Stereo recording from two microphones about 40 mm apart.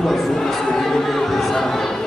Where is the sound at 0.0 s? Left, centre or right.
Centre.